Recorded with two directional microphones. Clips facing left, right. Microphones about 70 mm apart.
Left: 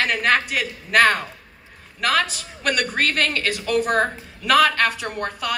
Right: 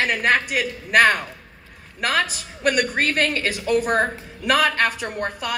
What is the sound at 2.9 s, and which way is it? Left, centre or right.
A woman's voice, centre.